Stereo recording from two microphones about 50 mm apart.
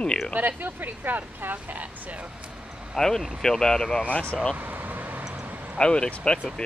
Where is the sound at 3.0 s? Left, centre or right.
Centre.